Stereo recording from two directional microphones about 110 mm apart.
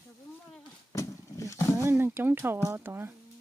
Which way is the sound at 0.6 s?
35° left (ahead or behind).